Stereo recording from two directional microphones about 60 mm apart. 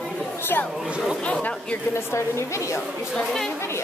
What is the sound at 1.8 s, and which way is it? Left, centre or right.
A woman's voice, left.